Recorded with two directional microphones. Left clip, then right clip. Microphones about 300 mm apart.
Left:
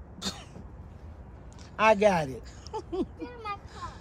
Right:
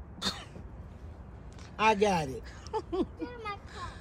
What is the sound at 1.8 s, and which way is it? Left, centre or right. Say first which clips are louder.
Speech: left 4 dB; centre.